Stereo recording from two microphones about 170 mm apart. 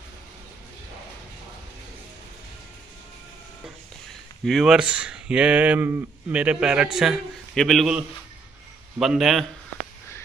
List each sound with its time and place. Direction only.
4.5 s speech: centre (ahead or behind)
9.0 s speech: centre (ahead or behind)